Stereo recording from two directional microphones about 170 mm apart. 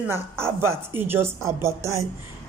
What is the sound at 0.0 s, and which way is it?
Speech, 15° right (ahead or behind).